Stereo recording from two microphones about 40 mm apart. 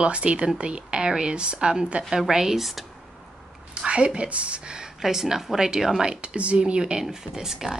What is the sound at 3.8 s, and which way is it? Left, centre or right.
A woman's voice, right.